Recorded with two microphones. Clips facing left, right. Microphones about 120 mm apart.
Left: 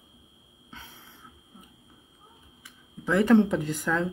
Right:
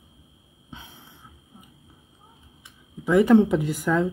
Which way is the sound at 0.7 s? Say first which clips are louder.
Right 3 dB; 15° right (ahead or behind).